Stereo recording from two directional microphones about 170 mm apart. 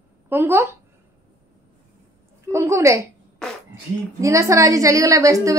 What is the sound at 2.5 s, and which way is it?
Speech, 15° right (ahead or behind).